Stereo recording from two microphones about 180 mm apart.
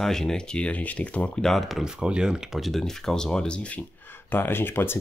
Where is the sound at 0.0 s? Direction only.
5° left (ahead or behind).